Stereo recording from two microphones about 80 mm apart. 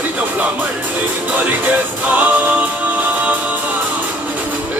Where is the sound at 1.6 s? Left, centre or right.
Centre.